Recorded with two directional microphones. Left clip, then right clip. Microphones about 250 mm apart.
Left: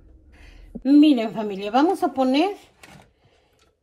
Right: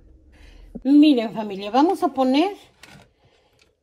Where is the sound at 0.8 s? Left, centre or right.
Right.